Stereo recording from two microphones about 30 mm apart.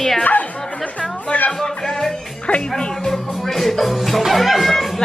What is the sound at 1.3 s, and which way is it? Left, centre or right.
Music, left.